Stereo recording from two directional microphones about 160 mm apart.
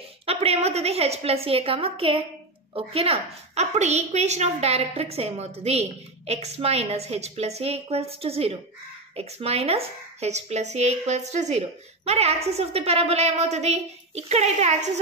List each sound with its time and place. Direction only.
0.3 s a woman's voice: 40° right (ahead or behind)